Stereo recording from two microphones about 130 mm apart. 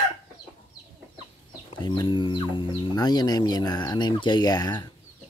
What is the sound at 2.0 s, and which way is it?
Speech, 40° left (ahead or behind).